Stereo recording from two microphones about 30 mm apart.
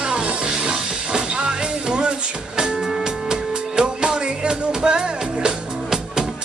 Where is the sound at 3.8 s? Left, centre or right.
Right.